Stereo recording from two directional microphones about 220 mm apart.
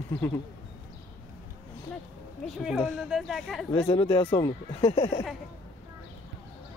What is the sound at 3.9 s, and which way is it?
Speech, 20° left (ahead or behind).